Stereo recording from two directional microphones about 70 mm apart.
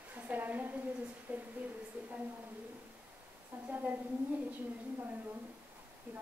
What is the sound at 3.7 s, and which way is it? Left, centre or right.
Speech, right.